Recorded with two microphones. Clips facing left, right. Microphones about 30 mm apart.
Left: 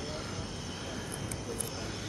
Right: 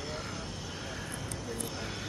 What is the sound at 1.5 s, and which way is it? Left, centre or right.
Vehicle, centre.